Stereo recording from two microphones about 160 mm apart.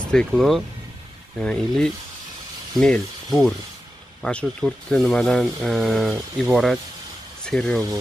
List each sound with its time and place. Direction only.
0.1 s speech: 5° left (ahead or behind)